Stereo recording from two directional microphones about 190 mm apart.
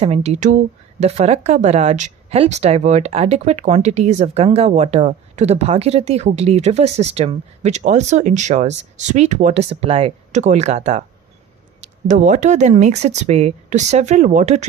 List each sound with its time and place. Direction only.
0.0 s speech: 35° right (ahead or behind)